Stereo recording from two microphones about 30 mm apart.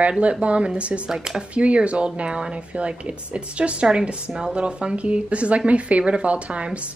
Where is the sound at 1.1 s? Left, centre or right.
Right.